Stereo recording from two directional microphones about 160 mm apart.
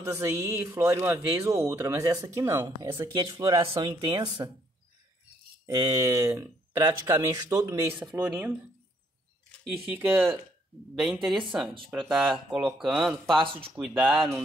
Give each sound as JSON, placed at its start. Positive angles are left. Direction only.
{"t": 0.0, "sound": "speech", "side_deg": -20}
{"t": 3.2, "sound": "speech", "side_deg": -30}
{"t": 5.7, "sound": "speech", "side_deg": -20}
{"t": 9.8, "sound": "speech", "side_deg": -10}
{"t": 11.9, "sound": "speech", "side_deg": 0}
{"t": 13.4, "sound": "speech", "side_deg": -35}
{"t": 13.7, "sound": "speech", "side_deg": -5}